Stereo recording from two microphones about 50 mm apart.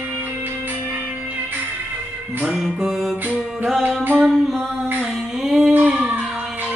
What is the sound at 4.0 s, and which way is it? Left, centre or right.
Music, right.